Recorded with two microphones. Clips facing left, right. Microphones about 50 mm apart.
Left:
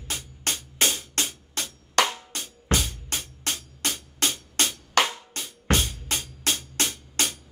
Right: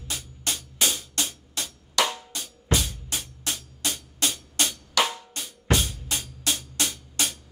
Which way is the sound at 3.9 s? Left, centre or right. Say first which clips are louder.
Left 1 dB; left.